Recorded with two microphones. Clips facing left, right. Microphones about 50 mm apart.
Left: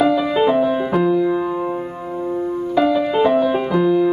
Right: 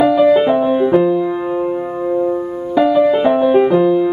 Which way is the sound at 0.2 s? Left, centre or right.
Centre.